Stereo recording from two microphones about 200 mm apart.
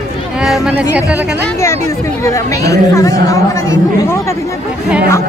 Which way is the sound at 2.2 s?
15° left (ahead or behind).